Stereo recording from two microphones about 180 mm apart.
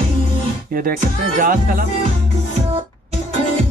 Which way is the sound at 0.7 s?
55° right (ahead or behind).